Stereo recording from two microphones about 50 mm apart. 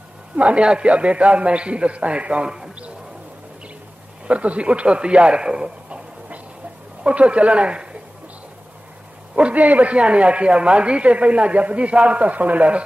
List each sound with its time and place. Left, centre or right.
0.4 s a man's voice: right
4.3 s a man's voice: right
9.3 s a man's voice: right